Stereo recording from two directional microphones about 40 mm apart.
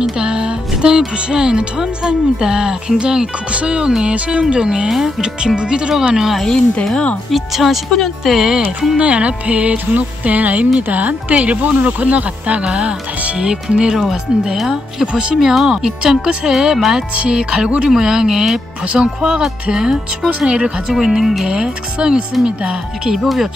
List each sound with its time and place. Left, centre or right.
0.2 s music: right
3.5 s speech: right
4.8 s speech: centre
7.2 s speech: centre
8.9 s speech: right
15.5 s speech: centre
17.2 s speech: centre
18.9 s speech: right
20.9 s speech: centre
21.2 s speech: centre
21.5 s speech: right
23.2 s speech: centre